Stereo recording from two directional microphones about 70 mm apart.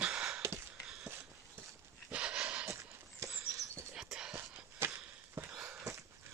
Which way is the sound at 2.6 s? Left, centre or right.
Right.